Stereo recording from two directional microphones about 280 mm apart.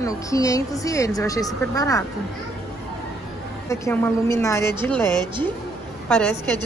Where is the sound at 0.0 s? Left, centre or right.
Centre.